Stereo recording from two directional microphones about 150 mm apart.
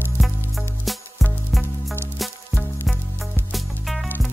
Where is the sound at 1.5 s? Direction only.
Centre (ahead or behind).